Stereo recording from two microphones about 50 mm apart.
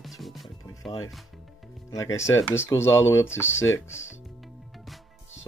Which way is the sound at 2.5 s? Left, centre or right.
Left.